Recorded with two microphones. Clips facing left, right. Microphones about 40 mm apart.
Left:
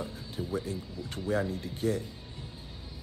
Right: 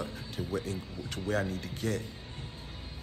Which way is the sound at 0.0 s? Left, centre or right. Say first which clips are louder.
Even; right.